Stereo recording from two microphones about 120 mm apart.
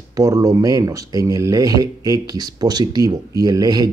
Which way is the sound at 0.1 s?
30° right (ahead or behind).